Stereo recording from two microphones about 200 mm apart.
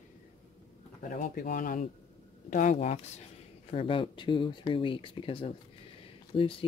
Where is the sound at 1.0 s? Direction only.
40° left (ahead or behind).